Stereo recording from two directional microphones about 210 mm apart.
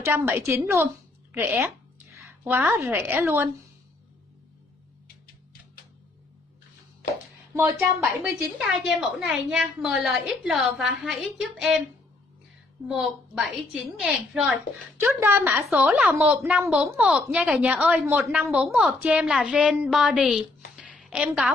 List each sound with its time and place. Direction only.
0.0 s a woman's voice: 10° right (ahead or behind)
1.3 s a sound: 10° right (ahead or behind)
2.2 s a woman's voice: 10° right (ahead or behind)
7.5 s a woman's voice: 15° right (ahead or behind)
8.5 s a woman's voice: centre (ahead or behind)
12.8 s a woman's voice: centre (ahead or behind)